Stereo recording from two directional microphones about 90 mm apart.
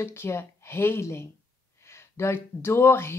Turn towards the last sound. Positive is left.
turn(degrees=25)  # may be behind; listen again after turning